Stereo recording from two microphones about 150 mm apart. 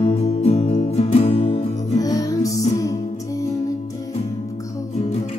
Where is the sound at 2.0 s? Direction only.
25° left (ahead or behind).